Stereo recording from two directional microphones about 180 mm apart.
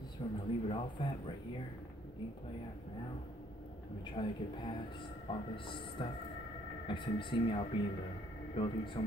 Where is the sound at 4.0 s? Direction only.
25° left (ahead or behind).